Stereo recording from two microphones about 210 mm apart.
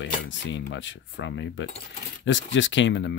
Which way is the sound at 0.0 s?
60° left (ahead or behind).